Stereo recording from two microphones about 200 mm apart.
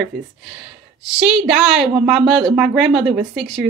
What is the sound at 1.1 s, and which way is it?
A woman's voice, centre (ahead or behind).